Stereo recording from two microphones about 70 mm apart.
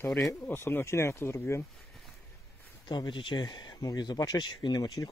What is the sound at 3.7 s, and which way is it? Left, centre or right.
Speech, left.